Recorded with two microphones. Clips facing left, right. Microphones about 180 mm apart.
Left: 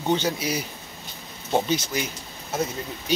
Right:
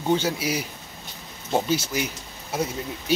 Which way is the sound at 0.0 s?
5° right (ahead or behind).